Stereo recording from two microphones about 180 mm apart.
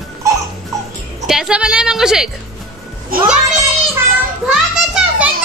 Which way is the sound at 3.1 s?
55° right (ahead or behind).